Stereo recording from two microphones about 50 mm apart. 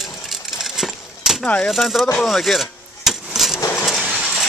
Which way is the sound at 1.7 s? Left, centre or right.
Centre.